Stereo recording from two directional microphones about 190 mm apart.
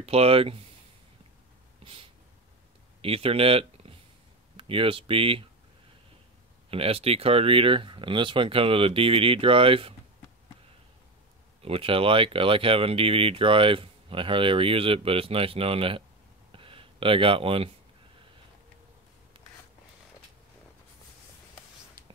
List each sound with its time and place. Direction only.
0.0 s speech: 30° right (ahead or behind)
3.0 s speech: 30° right (ahead or behind)
6.7 s speech: 30° right (ahead or behind)
11.6 s speech: 30° right (ahead or behind)
16.5 s a sound: 30° right (ahead or behind)